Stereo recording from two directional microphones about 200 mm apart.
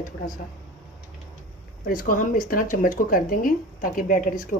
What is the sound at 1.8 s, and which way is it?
Speech, 45° left (ahead or behind).